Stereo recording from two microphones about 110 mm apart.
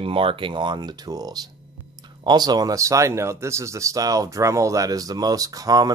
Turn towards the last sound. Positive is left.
turn(degrees=-35)  # may be behind; listen again after turning